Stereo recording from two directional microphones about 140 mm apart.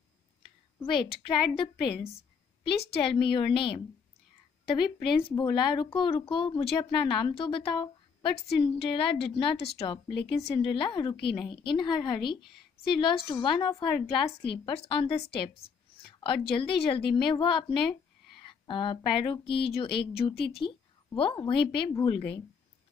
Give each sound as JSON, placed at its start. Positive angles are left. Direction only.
{"t": 0.8, "sound": "speech", "side_deg": 40}